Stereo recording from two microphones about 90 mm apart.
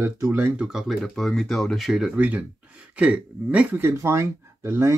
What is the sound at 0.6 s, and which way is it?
Speech, 5° right (ahead or behind).